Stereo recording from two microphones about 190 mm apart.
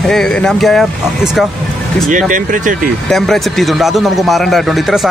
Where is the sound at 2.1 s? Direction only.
45° right (ahead or behind).